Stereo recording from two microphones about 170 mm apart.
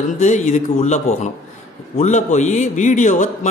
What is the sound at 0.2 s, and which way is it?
A man's voice, 45° left (ahead or behind).